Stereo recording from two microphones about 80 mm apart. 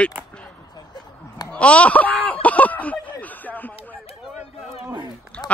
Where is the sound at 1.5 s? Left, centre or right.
Centre.